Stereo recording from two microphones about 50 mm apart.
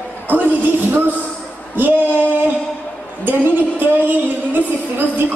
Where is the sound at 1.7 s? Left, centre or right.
Right.